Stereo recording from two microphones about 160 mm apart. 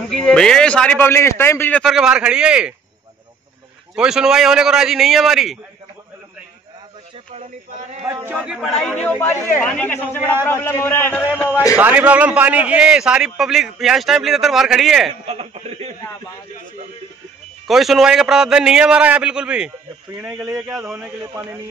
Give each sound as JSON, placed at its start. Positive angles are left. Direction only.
{"t": 0.2, "sound": "a man's voice", "side_deg": 5}
{"t": 3.9, "sound": "a man's voice", "side_deg": -5}
{"t": 8.2, "sound": "a man's voice", "side_deg": -10}
{"t": 11.7, "sound": "a man's voice", "side_deg": -10}
{"t": 15.2, "sound": "a man's voice", "side_deg": -40}
{"t": 17.6, "sound": "a man's voice", "side_deg": 0}
{"t": 21.2, "sound": "speech", "side_deg": -20}